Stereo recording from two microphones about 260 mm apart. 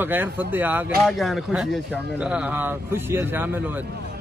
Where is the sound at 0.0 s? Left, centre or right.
Centre.